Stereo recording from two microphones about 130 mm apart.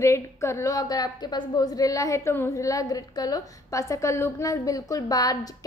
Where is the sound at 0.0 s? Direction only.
20° left (ahead or behind).